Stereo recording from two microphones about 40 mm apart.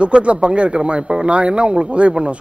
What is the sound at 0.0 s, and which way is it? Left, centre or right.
A woman's voice, right.